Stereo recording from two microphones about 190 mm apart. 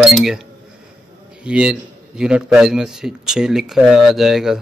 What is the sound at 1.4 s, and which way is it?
A man's voice, 5° right (ahead or behind).